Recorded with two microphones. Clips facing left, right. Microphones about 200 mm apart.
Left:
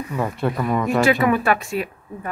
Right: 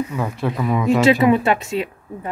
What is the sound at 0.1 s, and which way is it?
Speech, centre (ahead or behind).